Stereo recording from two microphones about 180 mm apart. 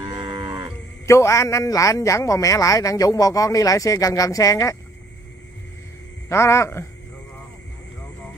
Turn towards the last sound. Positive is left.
turn(degrees=15)  # may be behind; listen again after turning